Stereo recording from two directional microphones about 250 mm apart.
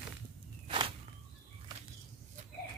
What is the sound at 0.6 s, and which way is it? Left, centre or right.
Walk, right.